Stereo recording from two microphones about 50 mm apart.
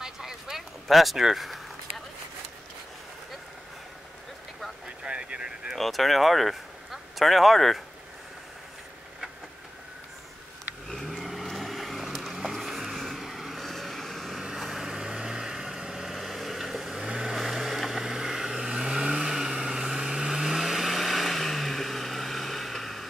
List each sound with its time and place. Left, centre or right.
0.0 s a sound: centre
4.8 s vehicle: centre
5.8 s speech: centre
10.9 s vehicle: centre